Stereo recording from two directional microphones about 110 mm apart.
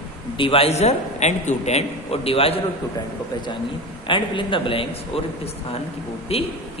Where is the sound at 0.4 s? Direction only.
60° left (ahead or behind).